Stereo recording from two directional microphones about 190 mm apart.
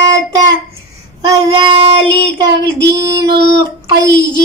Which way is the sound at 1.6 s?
25° right (ahead or behind).